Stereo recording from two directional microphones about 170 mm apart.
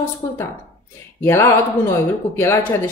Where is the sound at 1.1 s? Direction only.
15° left (ahead or behind).